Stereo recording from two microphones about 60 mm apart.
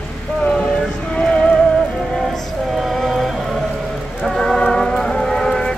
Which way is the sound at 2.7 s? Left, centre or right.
Centre.